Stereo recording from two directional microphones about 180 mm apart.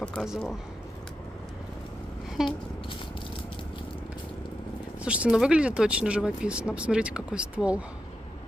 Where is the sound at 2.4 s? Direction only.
Centre (ahead or behind).